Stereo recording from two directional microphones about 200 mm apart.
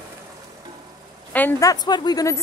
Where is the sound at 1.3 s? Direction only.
15° left (ahead or behind).